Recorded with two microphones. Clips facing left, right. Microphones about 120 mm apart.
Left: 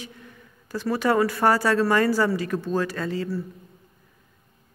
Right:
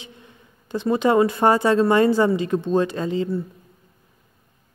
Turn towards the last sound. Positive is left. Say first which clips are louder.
# right 4 dB
turn(degrees=-20)  # may be behind; listen again after turning